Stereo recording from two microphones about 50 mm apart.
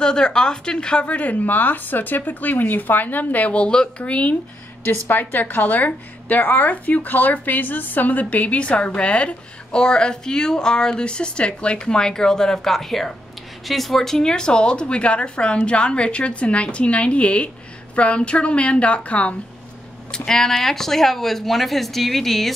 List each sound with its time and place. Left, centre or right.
0.0 s a woman's voice: centre
20.2 s speech: centre